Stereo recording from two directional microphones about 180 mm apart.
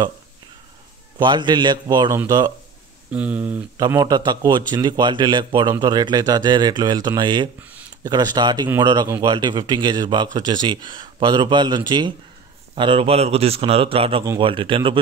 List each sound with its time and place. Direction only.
1.1 s a man's voice: 25° right (ahead or behind)
3.1 s speech: 10° right (ahead or behind)
3.7 s a man's voice: 20° right (ahead or behind)